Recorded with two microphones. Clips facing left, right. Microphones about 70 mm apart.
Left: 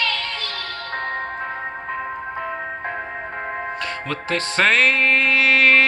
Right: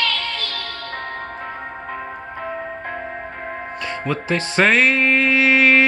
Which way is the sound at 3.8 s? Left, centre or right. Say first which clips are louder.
Right 2 dB; centre.